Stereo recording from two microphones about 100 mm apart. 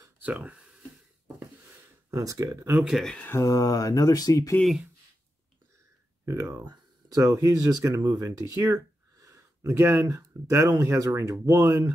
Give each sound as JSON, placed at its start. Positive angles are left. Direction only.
{"t": 0.2, "sound": "a sound", "side_deg": -15}
{"t": 2.0, "sound": "speech", "side_deg": -30}
{"t": 2.7, "sound": "speech", "side_deg": -10}
{"t": 3.0, "sound": "speech", "side_deg": 5}
{"t": 3.3, "sound": "speech", "side_deg": 30}
{"t": 6.2, "sound": "speech", "side_deg": -30}
{"t": 6.6, "sound": "speech", "side_deg": -40}